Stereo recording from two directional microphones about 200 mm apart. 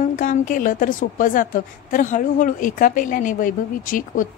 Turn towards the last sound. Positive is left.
turn(degrees=40)  # may be behind; listen again after turning